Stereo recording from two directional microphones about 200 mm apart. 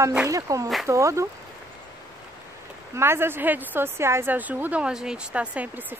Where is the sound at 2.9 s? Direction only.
10° right (ahead or behind).